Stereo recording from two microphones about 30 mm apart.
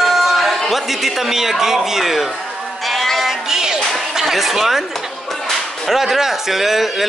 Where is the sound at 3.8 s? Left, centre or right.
Centre.